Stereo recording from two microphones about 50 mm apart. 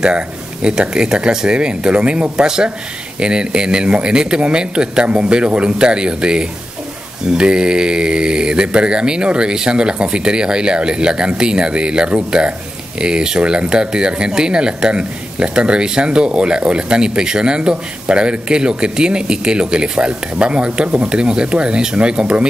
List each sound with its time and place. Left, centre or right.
0.7 s speech: centre